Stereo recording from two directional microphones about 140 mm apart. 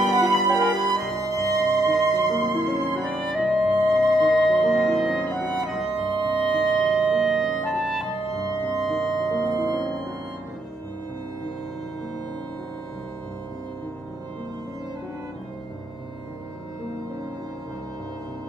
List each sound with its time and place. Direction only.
0.0 s music: centre (ahead or behind)